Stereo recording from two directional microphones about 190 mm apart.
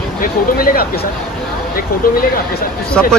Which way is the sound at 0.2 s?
50° left (ahead or behind).